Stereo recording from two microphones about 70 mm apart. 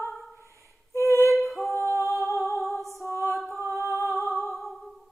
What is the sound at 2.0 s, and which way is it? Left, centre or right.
Humming, left.